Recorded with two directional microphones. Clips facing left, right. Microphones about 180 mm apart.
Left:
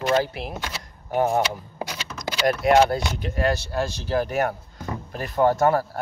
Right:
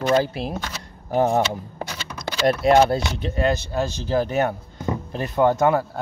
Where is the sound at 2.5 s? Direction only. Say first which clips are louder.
Right 2 dB; 30° right (ahead or behind).